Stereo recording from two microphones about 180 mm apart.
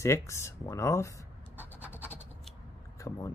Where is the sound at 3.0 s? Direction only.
20° left (ahead or behind).